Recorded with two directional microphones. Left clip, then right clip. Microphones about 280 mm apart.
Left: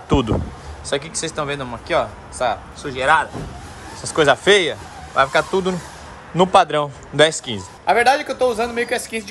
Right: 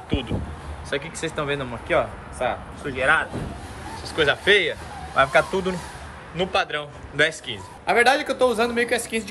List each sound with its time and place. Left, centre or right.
0.8 s a man's voice: centre
4.0 s a man's voice: left; by 9.3 s centre